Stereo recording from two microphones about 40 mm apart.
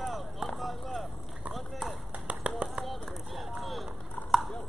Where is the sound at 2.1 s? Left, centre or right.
Right.